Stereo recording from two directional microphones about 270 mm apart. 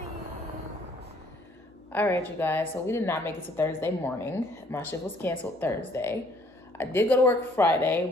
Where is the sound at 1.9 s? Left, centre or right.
Centre.